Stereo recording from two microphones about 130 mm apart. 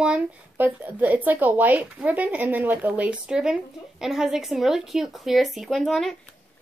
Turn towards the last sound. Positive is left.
turn(degrees=0)  # may be behind; listen again after turning